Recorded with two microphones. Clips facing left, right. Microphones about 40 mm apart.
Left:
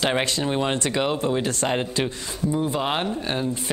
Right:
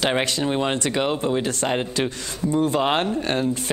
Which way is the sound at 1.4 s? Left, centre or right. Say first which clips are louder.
Right 1 dB; right.